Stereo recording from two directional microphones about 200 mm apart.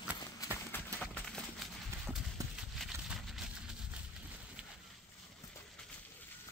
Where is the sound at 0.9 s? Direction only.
5° left (ahead or behind).